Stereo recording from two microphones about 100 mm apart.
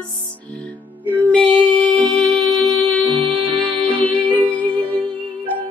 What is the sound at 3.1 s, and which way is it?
Music, 55° right (ahead or behind).